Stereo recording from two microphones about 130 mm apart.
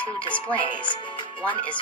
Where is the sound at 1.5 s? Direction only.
10° left (ahead or behind).